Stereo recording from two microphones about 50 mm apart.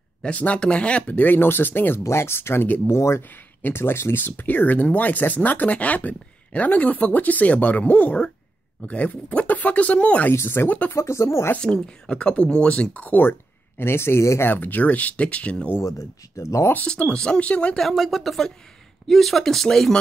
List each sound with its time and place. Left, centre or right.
0.2 s speech: left
1.2 s speech: left
2.0 s speech: left
2.9 s speech: left
3.2 s speech: left
10.3 s speech: left
11.0 s speech: left
11.6 s speech: centre
13.2 s speech: left
14.4 s speech: left
15.8 s speech: left
16.8 s speech: left
17.7 s speech: centre